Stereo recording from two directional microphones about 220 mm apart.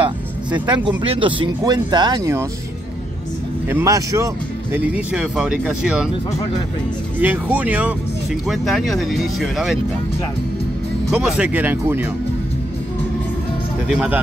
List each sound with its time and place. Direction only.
0.0 s music: 20° right (ahead or behind)
0.8 s speech: 25° right (ahead or behind)
3.6 s speech: 15° right (ahead or behind)
7.2 s speech: 5° right (ahead or behind)
11.1 s speech: 5° right (ahead or behind)
13.8 s speech: 5° right (ahead or behind)